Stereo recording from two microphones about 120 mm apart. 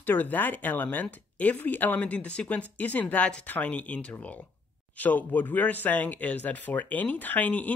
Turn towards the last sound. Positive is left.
turn(degrees=15)  # may be behind; listen again after turning